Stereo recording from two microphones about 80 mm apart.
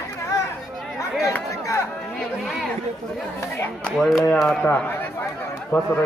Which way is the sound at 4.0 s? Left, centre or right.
Centre.